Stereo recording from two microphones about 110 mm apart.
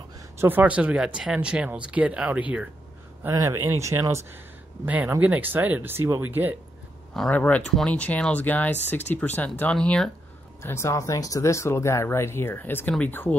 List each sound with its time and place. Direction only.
0.4 s speech: 15° right (ahead or behind)
3.3 s speech: 25° right (ahead or behind)
4.8 s speech: 15° right (ahead or behind)
7.2 s speech: 10° left (ahead or behind)
10.6 s speech: 25° left (ahead or behind)